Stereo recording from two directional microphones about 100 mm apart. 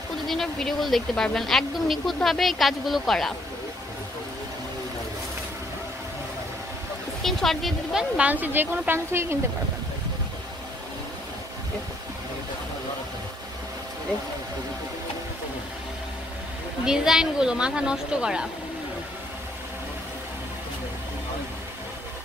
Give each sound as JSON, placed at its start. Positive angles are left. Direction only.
{"t": 0.3, "sound": "speech", "side_deg": 5}
{"t": 7.2, "sound": "speech", "side_deg": 5}
{"t": 8.3, "sound": "speech", "side_deg": -20}
{"t": 16.8, "sound": "speech", "side_deg": -5}